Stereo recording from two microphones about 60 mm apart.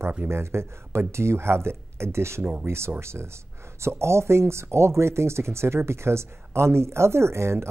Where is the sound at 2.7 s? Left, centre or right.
Right.